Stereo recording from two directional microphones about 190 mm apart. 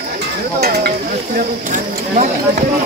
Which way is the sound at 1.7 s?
40° right (ahead or behind).